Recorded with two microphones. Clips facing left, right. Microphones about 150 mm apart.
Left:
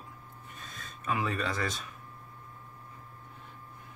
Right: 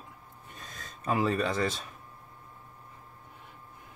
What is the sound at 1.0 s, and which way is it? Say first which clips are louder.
Speech: right 4 dB; 30° right (ahead or behind).